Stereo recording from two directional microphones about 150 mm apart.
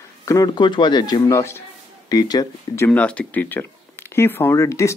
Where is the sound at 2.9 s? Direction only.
10° left (ahead or behind).